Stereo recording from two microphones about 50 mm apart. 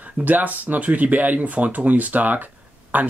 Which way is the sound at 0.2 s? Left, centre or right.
Right.